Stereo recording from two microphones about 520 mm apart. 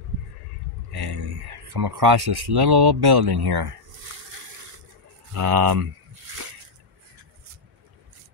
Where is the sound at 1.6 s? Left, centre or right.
Right.